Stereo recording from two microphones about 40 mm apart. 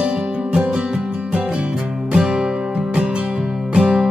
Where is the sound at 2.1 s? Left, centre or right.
Centre.